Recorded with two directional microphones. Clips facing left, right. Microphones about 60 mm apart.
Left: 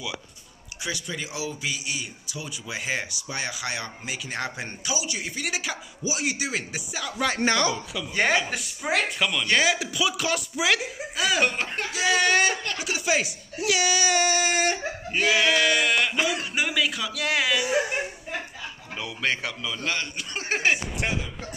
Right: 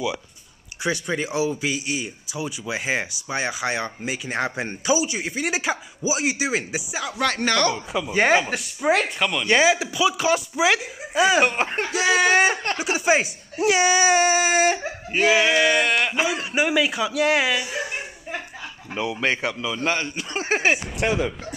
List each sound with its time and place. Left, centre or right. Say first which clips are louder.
0.8 s speech: right 8 dB; right; by 7.2 s centre
7.2 s speech: right 2 dB; centre
7.4 s speech: right 2 dB; centre
7.7 s speech: right 5 dB; centre
12.0 s speech: right 4 dB; centre
12.7 s speech: right 5 dB; right
18.9 s speech: right 5 dB; right
21.0 s speech: right 7 dB; right